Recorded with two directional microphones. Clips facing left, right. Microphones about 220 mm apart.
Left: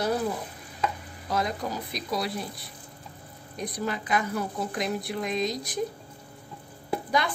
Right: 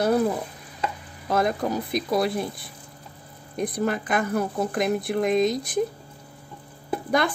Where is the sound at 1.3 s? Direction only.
50° right (ahead or behind).